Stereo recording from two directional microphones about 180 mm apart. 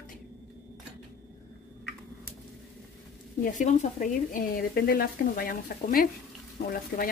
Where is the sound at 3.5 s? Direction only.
45° left (ahead or behind).